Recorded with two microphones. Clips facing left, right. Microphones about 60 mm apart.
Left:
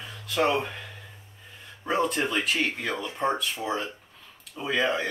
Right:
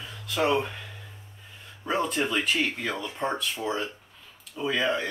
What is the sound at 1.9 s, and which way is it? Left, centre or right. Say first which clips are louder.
Speech: left 1 dB; centre.